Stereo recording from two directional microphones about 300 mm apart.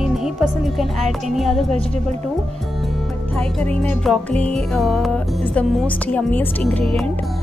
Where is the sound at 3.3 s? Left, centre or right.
Centre.